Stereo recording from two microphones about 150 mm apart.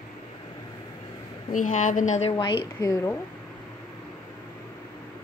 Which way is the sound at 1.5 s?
60° left (ahead or behind).